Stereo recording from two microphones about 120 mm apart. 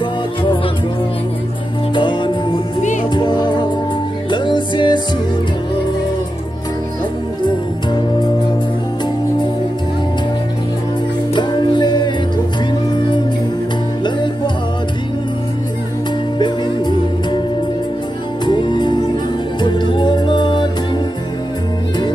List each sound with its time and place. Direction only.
2.0 s music: 45° left (ahead or behind)
2.8 s music: 90° left
3.1 s music: 40° left (ahead or behind)
11.3 s music: 40° left (ahead or behind)
14.0 s music: 40° left (ahead or behind)
16.3 s music: 40° left (ahead or behind)
18.4 s music: 40° left (ahead or behind)